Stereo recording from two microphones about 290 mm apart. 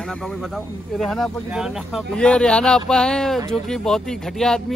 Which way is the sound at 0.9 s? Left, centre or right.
Centre.